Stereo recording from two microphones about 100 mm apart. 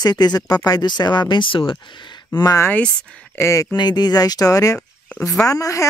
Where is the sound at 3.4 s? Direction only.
30° left (ahead or behind).